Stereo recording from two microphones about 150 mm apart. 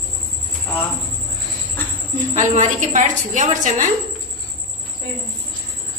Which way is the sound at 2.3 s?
50° right (ahead or behind).